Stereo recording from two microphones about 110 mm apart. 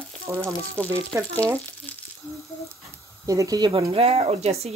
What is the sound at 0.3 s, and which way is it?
Frying, 20° right (ahead or behind).